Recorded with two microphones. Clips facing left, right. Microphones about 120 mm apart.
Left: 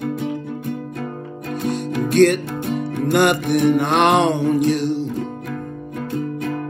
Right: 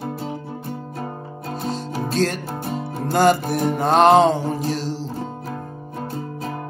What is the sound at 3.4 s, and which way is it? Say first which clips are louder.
Mantra: left 4 dB; 35° right (ahead or behind).